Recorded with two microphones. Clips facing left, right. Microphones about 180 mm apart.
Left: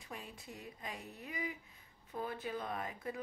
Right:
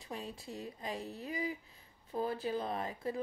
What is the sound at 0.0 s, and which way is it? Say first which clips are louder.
Speech: right 6 dB; 30° right (ahead or behind).